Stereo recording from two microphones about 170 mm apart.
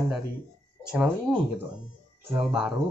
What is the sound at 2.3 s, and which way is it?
Speech, 5° right (ahead or behind).